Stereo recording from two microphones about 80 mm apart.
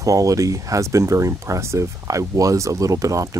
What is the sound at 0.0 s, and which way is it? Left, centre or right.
Speech, right.